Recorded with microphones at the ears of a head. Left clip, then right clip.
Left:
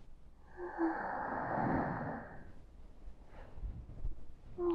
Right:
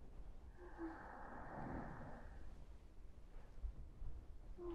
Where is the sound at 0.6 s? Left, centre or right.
Left.